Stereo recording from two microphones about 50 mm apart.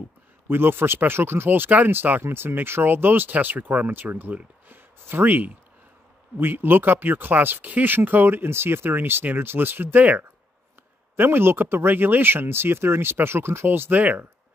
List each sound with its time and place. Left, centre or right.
0.5 s speech: right
11.1 s speech: right